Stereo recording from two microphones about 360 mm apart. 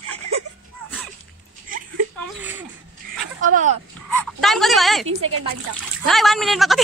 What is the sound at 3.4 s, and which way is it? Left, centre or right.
Speech, right.